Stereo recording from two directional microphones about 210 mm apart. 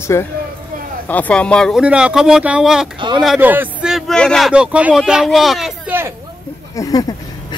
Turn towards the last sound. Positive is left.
turn(degrees=15)  # may be behind; listen again after turning